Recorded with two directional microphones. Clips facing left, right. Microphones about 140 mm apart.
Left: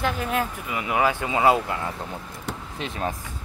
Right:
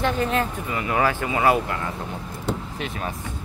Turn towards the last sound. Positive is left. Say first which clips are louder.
# left 1 dB
turn(degrees=35)  # may be behind; listen again after turning